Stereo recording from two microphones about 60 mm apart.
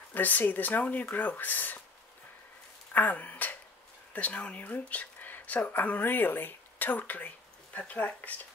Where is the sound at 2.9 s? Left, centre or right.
Left.